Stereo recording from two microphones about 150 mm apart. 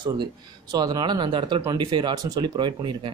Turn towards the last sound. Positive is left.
turn(degrees=-30)  # may be behind; listen again after turning